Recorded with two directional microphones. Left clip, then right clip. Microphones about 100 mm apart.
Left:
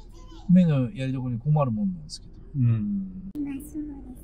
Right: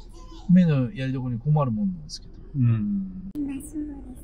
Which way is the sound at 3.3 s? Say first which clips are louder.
Right 2 dB; 25° left (ahead or behind).